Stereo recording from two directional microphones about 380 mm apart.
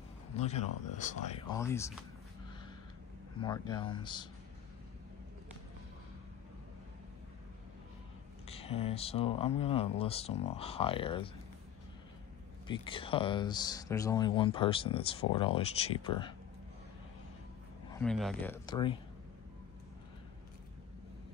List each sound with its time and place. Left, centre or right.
0.4 s speech: centre
3.4 s speech: centre
8.5 s speech: centre
12.6 s speech: centre
17.9 s speech: centre